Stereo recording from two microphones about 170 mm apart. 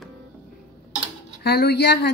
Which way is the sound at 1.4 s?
75° left (ahead or behind).